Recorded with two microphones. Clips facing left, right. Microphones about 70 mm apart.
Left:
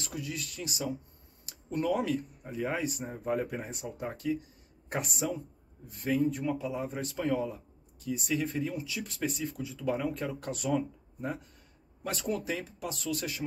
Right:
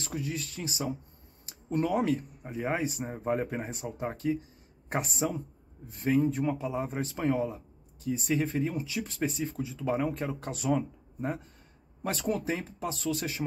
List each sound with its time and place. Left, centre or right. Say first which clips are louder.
0.0 s speech: right 3 dB; right
9.9 s speech: right 2 dB; right
12.0 s speech: right 3 dB; right